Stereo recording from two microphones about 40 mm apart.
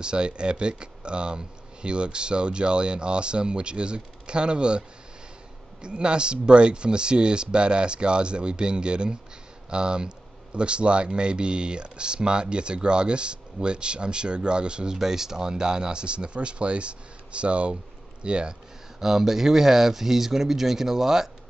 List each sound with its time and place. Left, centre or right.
0.0 s speech: right
15.0 s speech: centre
18.9 s speech: centre